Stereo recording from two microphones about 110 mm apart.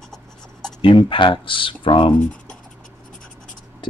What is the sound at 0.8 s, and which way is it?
Speech, 50° left (ahead or behind).